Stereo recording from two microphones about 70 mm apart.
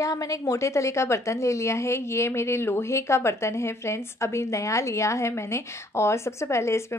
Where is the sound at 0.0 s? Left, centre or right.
Left.